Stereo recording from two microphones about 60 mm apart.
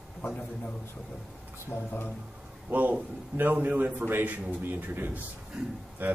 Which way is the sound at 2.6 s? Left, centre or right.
Right.